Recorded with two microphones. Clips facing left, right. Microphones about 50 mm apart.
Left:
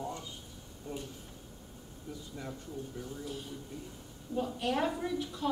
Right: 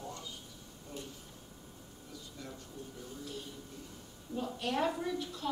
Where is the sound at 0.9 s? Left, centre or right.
Left.